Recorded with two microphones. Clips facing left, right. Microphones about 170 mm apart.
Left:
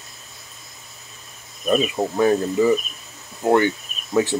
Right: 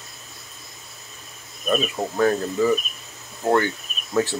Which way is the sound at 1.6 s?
15° left (ahead or behind).